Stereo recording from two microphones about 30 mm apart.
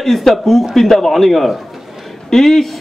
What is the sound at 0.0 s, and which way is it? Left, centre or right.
Speech, centre.